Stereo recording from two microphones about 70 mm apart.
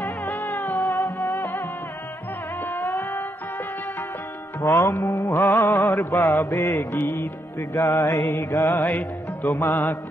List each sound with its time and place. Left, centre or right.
0.0 s music: left
2.7 s music: left
4.6 s music: left
8.7 s music: left